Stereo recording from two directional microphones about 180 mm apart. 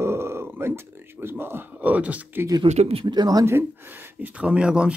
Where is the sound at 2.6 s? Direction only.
35° right (ahead or behind); by 4.9 s 5° right (ahead or behind).